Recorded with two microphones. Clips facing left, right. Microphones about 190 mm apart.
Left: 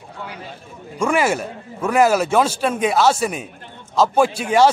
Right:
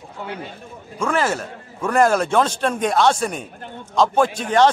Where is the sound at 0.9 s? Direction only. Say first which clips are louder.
Left 3 dB; 10° left (ahead or behind).